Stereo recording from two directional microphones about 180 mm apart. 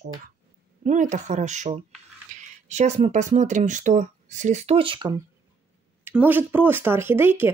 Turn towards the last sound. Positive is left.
turn(degrees=-10)  # may be behind; listen again after turning